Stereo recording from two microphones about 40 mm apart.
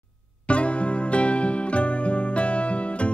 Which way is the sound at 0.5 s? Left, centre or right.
Left.